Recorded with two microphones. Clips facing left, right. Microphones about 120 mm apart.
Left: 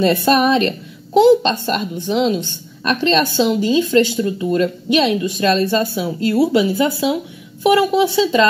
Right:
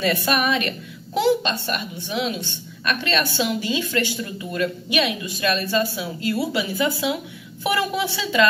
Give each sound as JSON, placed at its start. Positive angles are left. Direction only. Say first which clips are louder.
{"t": 0.0, "sound": "a woman's voice", "louder": "left 8 dB", "side_deg": 30}